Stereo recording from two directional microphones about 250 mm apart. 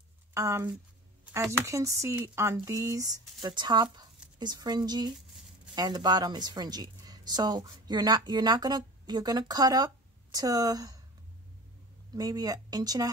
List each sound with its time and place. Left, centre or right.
0.3 s a woman's voice: centre
12.1 s a woman's voice: centre